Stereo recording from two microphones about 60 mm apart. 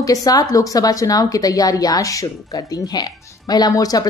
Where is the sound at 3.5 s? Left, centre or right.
Left.